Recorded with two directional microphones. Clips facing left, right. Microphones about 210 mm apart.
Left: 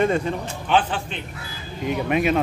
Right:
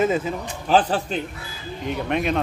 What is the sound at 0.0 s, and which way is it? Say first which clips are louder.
Speech: even; 5° right (ahead or behind).